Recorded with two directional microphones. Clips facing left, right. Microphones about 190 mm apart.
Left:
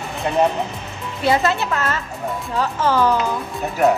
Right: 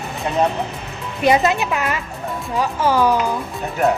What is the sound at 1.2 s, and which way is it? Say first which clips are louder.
A woman's voice: right 2 dB; 15° right (ahead or behind).